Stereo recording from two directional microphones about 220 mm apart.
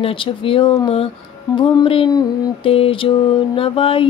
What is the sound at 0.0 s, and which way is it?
Mantra, 25° left (ahead or behind).